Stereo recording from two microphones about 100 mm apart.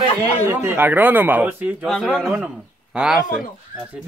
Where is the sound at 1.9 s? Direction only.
5° left (ahead or behind).